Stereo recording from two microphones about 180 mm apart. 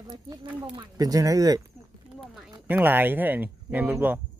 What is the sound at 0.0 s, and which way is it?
Speech, 25° right (ahead or behind).